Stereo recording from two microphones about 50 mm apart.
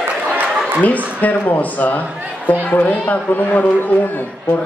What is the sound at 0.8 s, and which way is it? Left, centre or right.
A woman's voice, left.